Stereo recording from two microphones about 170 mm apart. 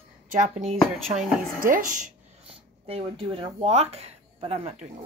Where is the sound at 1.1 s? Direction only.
55° right (ahead or behind).